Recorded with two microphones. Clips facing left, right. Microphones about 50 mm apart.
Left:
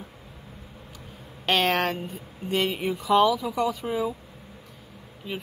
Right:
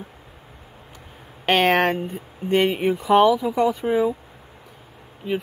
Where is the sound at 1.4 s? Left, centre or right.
Right.